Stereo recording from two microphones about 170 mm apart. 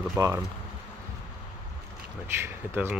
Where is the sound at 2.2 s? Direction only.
15° right (ahead or behind).